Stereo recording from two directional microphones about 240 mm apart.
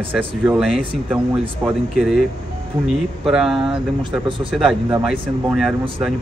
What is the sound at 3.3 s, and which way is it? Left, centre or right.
Speech, centre.